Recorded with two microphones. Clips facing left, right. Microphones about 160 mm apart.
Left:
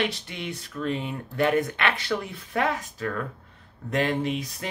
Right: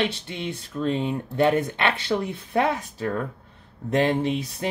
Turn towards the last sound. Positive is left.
turn(degrees=-25)  # may be behind; listen again after turning